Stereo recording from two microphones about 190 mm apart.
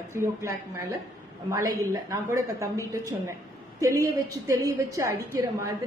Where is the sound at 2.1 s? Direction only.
15° right (ahead or behind).